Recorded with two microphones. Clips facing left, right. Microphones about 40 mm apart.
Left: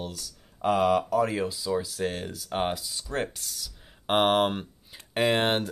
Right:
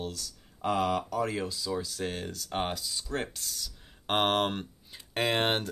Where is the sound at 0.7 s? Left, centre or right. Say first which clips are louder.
Left 6 dB; left.